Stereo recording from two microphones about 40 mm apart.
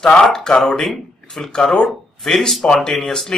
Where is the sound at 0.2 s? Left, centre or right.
Centre.